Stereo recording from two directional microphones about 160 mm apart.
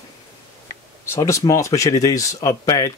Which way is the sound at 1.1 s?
20° left (ahead or behind).